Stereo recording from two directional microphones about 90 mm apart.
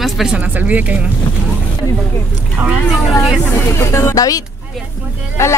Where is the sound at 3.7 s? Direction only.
30° left (ahead or behind).